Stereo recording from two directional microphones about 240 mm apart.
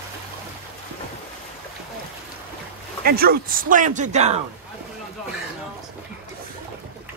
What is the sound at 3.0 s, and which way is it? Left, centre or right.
A man's voice, right.